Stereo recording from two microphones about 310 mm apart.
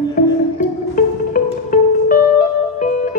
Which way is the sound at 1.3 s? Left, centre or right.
Left.